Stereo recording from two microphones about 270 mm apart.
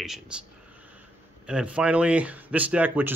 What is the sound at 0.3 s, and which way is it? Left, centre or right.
Speech, centre.